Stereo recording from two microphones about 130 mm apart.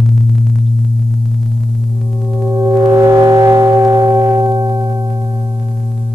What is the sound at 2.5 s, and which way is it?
Music, 25° right (ahead or behind).